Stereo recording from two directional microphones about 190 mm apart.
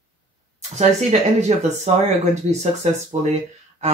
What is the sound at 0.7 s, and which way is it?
Speech, 35° right (ahead or behind).